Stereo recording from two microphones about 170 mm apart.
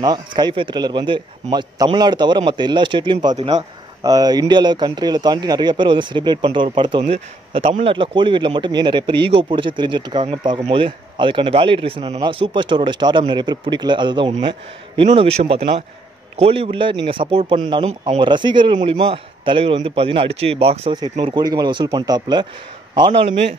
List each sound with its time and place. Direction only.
0.0 s a man's voice: 25° right (ahead or behind)